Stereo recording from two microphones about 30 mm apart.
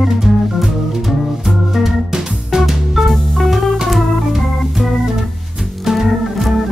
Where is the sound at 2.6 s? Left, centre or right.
Centre.